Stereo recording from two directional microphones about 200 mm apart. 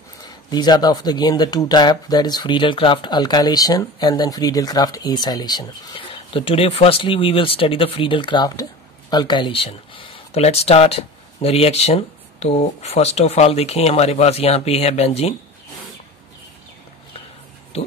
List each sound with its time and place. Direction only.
0.2 s speech: 20° left (ahead or behind)